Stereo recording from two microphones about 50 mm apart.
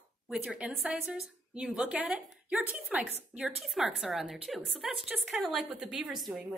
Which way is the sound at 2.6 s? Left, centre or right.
Right.